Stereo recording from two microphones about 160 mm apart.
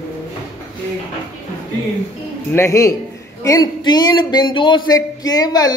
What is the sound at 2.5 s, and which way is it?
A man's voice, 20° left (ahead or behind).